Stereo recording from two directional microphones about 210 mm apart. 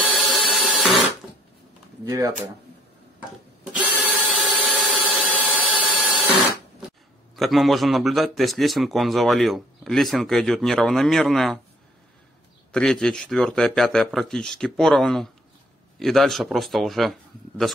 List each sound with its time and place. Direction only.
0.1 s printer: centre (ahead or behind)
2.0 s speech: 15° right (ahead or behind)
3.9 s a sound: 5° right (ahead or behind)
7.3 s a man's voice: centre (ahead or behind)
12.7 s a man's voice: 5° left (ahead or behind)